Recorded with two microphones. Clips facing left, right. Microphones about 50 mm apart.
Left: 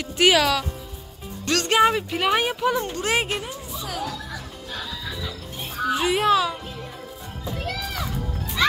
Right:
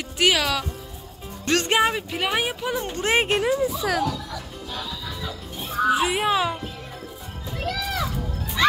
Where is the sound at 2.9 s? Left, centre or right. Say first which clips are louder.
Right 3 dB; right.